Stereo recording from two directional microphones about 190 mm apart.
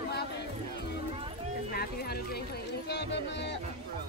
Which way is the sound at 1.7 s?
55° left (ahead or behind).